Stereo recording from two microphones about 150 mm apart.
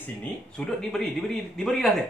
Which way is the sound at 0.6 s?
5° left (ahead or behind).